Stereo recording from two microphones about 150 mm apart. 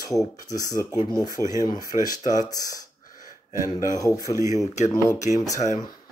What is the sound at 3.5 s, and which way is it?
Speech, 20° right (ahead or behind).